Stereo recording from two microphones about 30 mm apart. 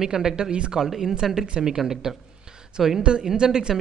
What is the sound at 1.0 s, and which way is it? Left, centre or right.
A woman's voice, centre.